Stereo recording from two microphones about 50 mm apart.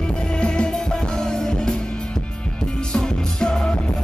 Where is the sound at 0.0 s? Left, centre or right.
Centre.